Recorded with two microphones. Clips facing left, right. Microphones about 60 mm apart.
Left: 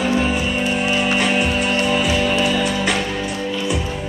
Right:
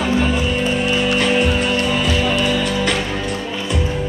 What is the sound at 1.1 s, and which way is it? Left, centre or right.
Music, centre.